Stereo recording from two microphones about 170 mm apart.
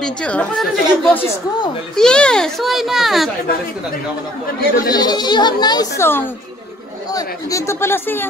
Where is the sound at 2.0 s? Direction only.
5° left (ahead or behind).